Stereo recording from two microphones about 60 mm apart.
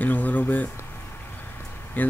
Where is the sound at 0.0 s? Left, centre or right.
Left.